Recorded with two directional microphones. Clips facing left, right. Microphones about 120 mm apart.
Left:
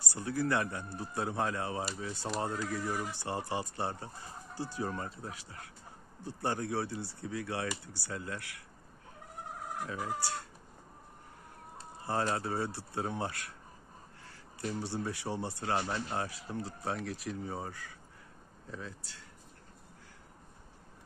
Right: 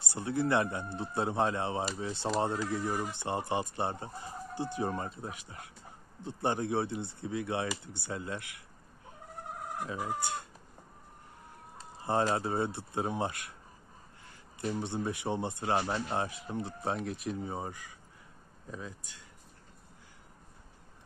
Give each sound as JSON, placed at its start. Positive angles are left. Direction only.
{"t": 0.0, "sound": "speech", "side_deg": -25}
{"t": 9.8, "sound": "speech", "side_deg": -20}
{"t": 12.1, "sound": "speech", "side_deg": -20}